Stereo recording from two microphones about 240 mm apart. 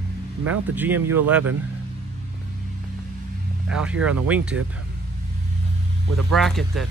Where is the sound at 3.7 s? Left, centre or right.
Centre.